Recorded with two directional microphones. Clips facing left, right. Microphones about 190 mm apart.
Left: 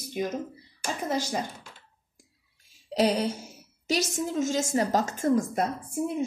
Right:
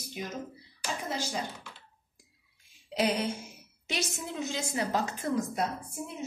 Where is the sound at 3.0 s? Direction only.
35° left (ahead or behind).